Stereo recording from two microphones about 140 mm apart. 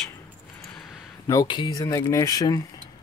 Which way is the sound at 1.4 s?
35° left (ahead or behind).